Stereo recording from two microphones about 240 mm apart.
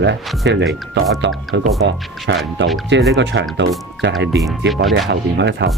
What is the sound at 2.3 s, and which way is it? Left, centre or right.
Speech, right.